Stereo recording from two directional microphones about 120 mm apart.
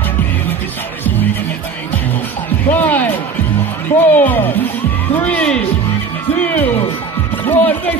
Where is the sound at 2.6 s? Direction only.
15° left (ahead or behind).